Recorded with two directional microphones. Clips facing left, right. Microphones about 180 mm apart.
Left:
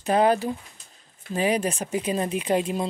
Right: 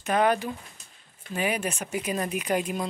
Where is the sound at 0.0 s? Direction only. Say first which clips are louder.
Left 3 dB; 30° left (ahead or behind).